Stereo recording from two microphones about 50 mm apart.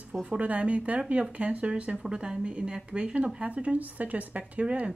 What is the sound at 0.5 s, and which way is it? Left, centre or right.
A woman's voice, right.